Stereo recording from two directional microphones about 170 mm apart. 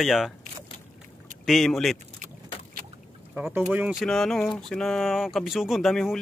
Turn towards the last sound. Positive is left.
turn(degrees=0)  # may be behind; listen again after turning